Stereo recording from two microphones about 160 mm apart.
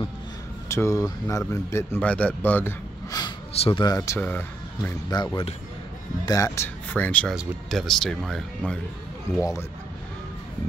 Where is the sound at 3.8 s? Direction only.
20° left (ahead or behind).